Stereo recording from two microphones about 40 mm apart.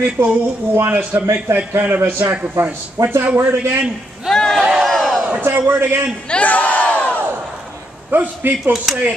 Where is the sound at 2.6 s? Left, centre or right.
Right.